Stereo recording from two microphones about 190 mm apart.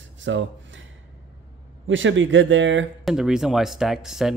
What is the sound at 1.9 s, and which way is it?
Speech, 90° right.